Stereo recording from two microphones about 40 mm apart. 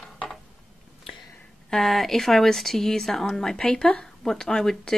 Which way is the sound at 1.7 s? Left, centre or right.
Centre.